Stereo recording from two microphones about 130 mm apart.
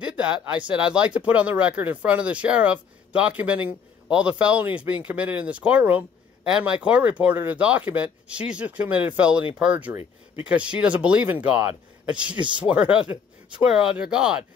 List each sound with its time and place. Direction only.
0.0 s speech: 5° right (ahead or behind)
12.4 s speech: 40° right (ahead or behind)
12.6 s speech: 10° right (ahead or behind)